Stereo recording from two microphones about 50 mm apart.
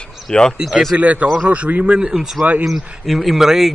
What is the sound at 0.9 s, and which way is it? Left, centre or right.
Speech, right.